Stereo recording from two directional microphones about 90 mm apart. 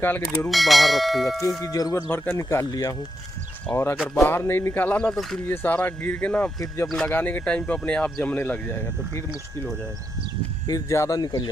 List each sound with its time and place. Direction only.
0.0 s speech: 25° left (ahead or behind)
0.5 s speech: centre (ahead or behind)
1.6 s tubular bells: 40° left (ahead or behind)
2.0 s speech: 25° left (ahead or behind)
2.7 s tubular bells: 45° left (ahead or behind)
3.7 s speech: 25° left (ahead or behind)
10.7 s speech: 35° left (ahead or behind)